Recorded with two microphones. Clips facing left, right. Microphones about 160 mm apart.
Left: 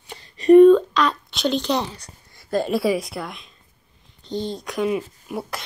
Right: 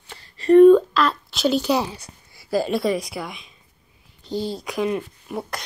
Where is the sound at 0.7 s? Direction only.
5° right (ahead or behind).